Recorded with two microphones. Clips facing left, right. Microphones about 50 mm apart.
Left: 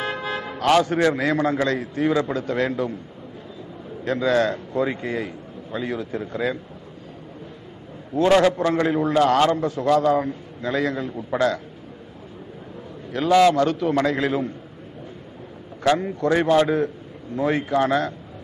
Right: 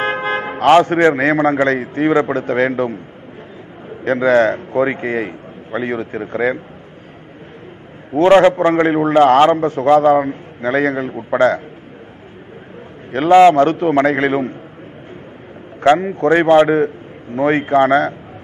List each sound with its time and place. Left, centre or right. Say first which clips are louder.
0.0 s a man's voice: right 8 dB; right
4.0 s a man's voice: right 7 dB; right
8.1 s a man's voice: right 7 dB; right
13.1 s a man's voice: right 8 dB; right
15.8 s a man's voice: right 8 dB; right